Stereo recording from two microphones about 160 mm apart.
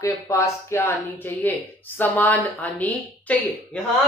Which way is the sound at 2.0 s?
10° left (ahead or behind).